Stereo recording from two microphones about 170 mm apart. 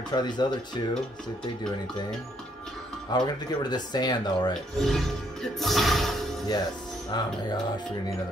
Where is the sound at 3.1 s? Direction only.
25° left (ahead or behind).